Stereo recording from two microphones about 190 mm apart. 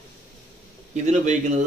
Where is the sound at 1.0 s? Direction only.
40° right (ahead or behind).